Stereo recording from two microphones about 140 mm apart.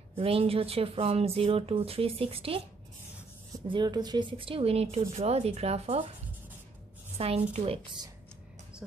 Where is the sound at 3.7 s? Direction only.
30° right (ahead or behind); by 6.0 s 50° right (ahead or behind).